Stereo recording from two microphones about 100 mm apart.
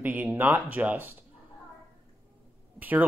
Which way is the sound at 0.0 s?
15° right (ahead or behind).